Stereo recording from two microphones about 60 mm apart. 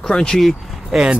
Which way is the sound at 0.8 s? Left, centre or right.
Centre.